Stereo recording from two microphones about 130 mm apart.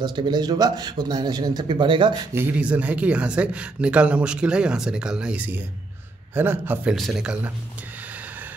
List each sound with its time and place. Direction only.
0.0 s a man's voice: 35° right (ahead or behind)
2.3 s speech: 15° right (ahead or behind)
7.0 s speech: centre (ahead or behind)